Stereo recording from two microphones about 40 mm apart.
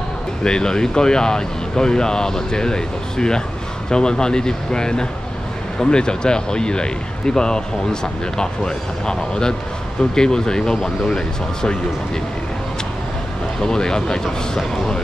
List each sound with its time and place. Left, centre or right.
0.4 s speech: left
13.6 s speech: centre